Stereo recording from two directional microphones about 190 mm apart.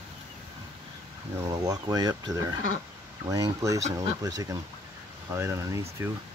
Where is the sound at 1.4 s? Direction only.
15° right (ahead or behind).